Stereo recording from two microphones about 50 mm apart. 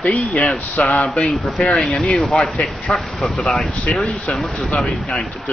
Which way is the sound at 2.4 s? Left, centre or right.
Centre.